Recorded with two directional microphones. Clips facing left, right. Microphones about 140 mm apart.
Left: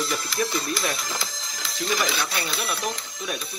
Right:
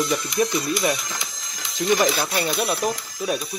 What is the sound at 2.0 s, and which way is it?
Speech, 40° right (ahead or behind).